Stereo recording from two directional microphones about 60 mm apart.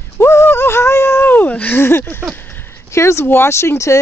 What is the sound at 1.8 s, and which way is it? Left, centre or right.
Speech, left.